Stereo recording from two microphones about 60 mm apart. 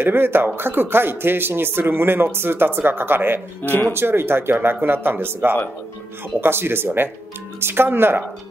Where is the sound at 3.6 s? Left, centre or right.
Left.